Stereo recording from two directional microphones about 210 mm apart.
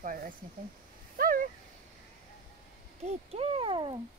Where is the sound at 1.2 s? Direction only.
45° right (ahead or behind).